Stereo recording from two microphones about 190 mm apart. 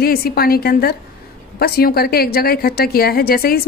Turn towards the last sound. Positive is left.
turn(degrees=55)  # may be behind; listen again after turning